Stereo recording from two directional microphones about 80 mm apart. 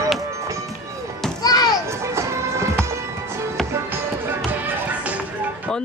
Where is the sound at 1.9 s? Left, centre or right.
Right; by 5.2 s centre.